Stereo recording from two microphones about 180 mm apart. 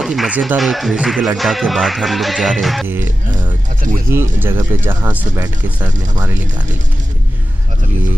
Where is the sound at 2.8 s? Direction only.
10° right (ahead or behind).